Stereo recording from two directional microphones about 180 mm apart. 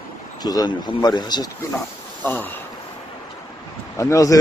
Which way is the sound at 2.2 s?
10° left (ahead or behind).